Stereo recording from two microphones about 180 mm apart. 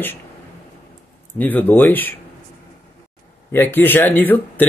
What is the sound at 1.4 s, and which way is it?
Speech, 10° left (ahead or behind).